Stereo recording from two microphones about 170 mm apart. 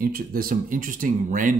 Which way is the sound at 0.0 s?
60° right (ahead or behind).